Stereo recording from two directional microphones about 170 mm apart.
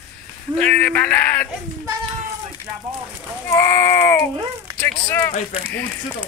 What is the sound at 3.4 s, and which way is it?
Speech, 15° left (ahead or behind).